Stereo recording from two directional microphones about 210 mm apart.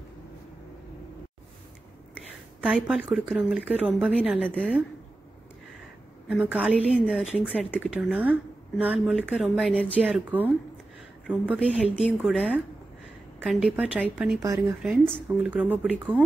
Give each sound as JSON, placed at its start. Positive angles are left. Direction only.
{"t": 2.6, "sound": "speech", "side_deg": 0}
{"t": 4.5, "sound": "speech", "side_deg": 5}
{"t": 6.2, "sound": "speech", "side_deg": -5}
{"t": 14.4, "sound": "speech", "side_deg": -15}
{"t": 14.8, "sound": "speech", "side_deg": 0}